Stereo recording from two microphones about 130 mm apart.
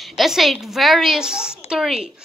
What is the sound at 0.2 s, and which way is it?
A woman's voice, centre (ahead or behind).